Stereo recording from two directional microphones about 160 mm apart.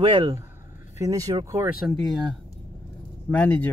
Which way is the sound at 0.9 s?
20° right (ahead or behind).